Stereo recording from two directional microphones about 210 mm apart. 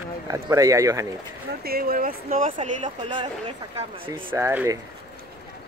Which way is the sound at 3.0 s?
20° right (ahead or behind).